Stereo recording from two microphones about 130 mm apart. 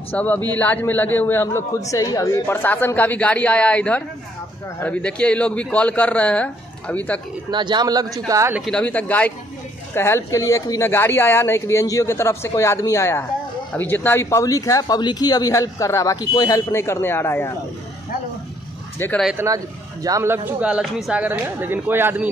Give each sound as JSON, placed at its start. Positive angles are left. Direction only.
{"t": 0.1, "sound": "a man's voice", "side_deg": 15}
{"t": 7.5, "sound": "a man's voice", "side_deg": -35}
{"t": 8.7, "sound": "a man's voice", "side_deg": 10}
{"t": 18.9, "sound": "a man's voice", "side_deg": 15}
{"t": 19.3, "sound": "speech", "side_deg": -25}